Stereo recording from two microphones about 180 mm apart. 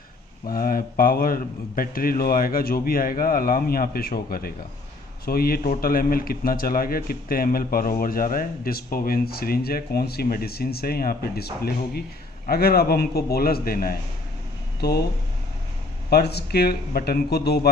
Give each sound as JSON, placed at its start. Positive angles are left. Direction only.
{"t": 0.5, "sound": "a man's voice", "side_deg": 55}
{"t": 16.1, "sound": "a man's voice", "side_deg": 65}